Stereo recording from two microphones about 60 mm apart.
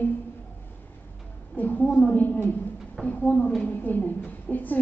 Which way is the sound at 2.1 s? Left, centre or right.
Left.